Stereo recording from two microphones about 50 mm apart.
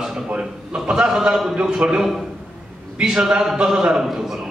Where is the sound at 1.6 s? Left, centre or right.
Centre.